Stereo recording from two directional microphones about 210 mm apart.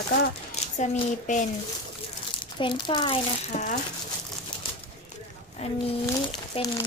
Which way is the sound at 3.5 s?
35° left (ahead or behind).